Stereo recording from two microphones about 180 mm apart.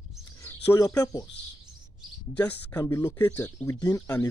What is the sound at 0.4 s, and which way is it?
Speech, 15° left (ahead or behind).